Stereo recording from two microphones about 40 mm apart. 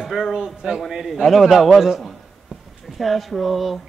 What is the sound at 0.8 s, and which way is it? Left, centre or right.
A man's voice, centre.